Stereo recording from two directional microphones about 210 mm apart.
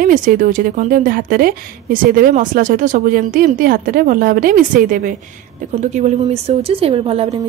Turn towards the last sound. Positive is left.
turn(degrees=-30)  # may be behind; listen again after turning